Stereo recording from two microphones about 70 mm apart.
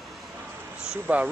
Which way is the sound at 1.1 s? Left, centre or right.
Right.